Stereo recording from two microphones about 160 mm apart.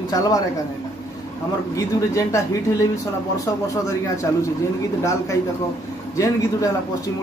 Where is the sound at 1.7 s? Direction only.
20° left (ahead or behind).